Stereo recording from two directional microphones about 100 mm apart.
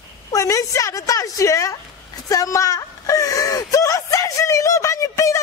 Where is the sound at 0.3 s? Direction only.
35° left (ahead or behind).